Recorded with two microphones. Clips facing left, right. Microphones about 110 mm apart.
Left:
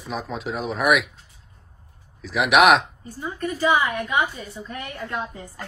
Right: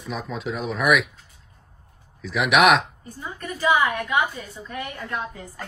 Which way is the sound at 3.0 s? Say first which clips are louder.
Left 5 dB; 30° left (ahead or behind).